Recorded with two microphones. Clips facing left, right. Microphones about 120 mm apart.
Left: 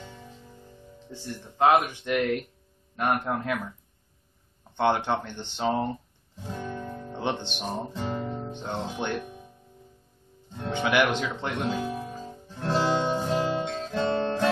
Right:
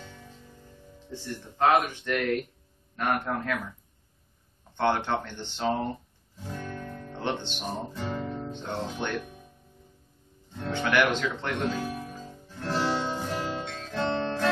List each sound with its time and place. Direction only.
0.0 s music: 20° left (ahead or behind)
1.1 s speech: 15° left (ahead or behind)
4.7 s speech: 15° left (ahead or behind)
6.4 s guitar: 20° left (ahead or behind)
8.0 s speech: 30° left (ahead or behind)
10.6 s music: 15° left (ahead or behind)